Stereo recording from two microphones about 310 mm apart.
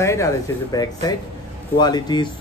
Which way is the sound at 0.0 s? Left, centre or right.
Centre.